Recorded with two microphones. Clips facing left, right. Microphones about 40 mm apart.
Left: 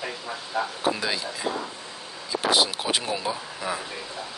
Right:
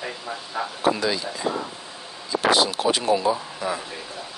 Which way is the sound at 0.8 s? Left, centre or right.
Centre.